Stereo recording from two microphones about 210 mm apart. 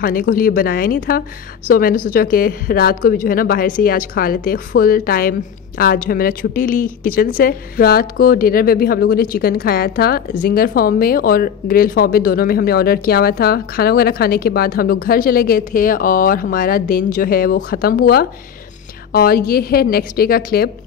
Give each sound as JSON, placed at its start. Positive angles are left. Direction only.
{"t": 0.0, "sound": "speech", "side_deg": 40}